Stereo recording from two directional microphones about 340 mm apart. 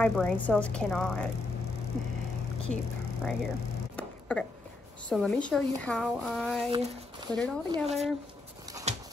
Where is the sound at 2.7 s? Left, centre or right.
Centre.